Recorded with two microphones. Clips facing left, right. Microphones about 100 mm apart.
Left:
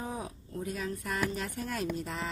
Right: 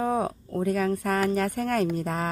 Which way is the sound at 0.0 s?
65° right (ahead or behind).